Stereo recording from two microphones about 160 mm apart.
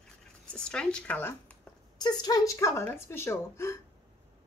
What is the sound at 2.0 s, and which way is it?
A woman's voice, 25° left (ahead or behind).